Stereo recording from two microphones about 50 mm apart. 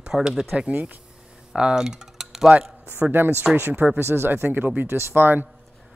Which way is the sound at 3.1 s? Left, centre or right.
Right.